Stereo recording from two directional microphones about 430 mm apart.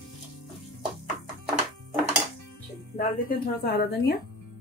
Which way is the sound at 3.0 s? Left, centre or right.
Left.